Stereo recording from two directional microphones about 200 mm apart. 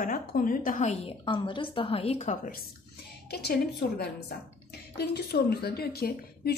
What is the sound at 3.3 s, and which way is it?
A woman's voice, 55° left (ahead or behind).